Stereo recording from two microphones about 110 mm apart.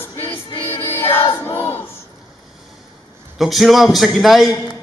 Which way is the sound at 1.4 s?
20° left (ahead or behind).